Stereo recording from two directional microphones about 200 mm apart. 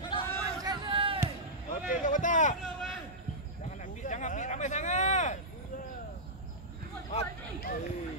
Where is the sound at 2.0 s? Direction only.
40° left (ahead or behind).